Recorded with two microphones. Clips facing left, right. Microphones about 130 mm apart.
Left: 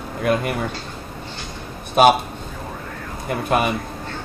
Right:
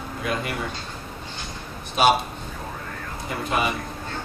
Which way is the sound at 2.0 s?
50° left (ahead or behind).